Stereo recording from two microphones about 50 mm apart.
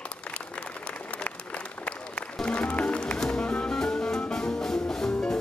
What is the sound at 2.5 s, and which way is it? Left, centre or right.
Music, left.